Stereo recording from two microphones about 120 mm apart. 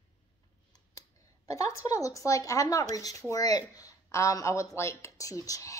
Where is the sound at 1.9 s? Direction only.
30° left (ahead or behind).